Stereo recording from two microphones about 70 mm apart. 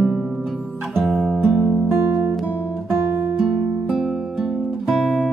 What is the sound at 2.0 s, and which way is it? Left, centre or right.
Guitar, right.